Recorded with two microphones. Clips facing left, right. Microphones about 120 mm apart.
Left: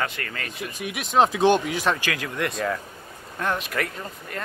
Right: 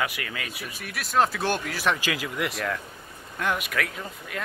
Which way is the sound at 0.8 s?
15° left (ahead or behind).